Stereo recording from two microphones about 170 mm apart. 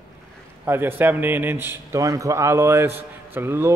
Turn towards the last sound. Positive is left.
turn(degrees=-15)  # may be behind; listen again after turning